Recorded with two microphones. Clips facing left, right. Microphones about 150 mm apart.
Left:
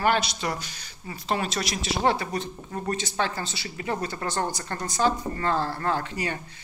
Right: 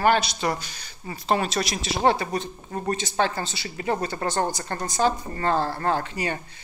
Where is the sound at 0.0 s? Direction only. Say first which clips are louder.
Right 3 dB; 35° right (ahead or behind).